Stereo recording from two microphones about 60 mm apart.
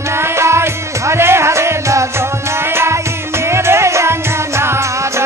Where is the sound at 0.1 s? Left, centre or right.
Right.